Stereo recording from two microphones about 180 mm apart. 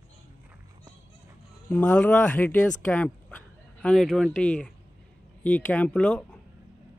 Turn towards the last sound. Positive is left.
turn(degrees=5)  # may be behind; listen again after turning